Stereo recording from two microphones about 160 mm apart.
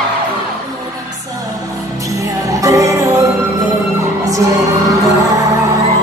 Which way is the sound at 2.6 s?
20° right (ahead or behind).